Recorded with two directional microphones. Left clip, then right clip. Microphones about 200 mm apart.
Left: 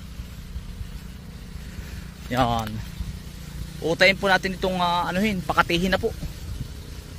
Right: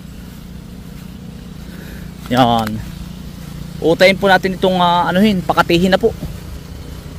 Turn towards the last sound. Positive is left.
turn(degrees=-10)  # may be behind; listen again after turning